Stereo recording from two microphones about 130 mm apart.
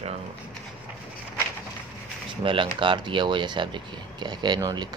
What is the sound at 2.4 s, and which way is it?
Speech, 40° right (ahead or behind).